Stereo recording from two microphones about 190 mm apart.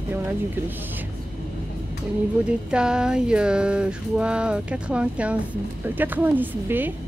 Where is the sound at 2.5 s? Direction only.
5° right (ahead or behind).